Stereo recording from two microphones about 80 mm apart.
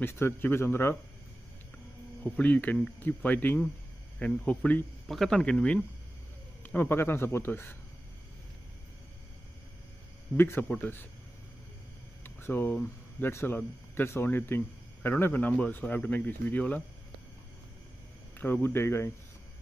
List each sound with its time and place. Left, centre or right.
0.0 s speech: left
2.2 s speech: centre
5.0 s speech: centre
6.6 s speech: left
10.3 s speech: left
12.2 s a sound: left
13.2 s speech: left
18.4 s speech: left